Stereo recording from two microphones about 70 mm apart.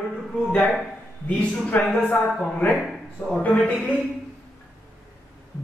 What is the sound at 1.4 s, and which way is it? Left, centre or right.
Speech, centre.